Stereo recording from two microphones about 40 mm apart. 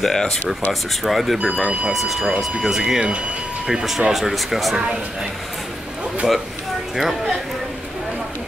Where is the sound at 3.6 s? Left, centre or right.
Centre.